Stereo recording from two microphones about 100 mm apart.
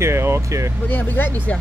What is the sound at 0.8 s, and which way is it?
Speech, 20° left (ahead or behind).